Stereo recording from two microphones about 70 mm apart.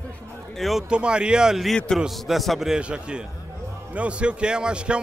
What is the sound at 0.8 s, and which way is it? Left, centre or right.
Speech, centre.